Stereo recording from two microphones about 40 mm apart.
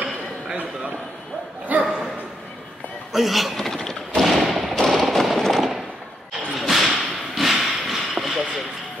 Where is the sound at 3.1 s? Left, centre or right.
Centre.